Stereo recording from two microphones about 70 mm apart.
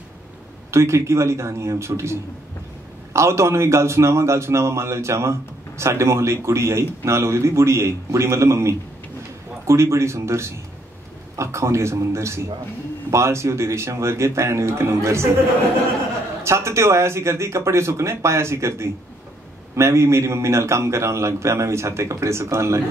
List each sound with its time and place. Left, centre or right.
0.7 s a man's voice: right
16.4 s a man's voice: right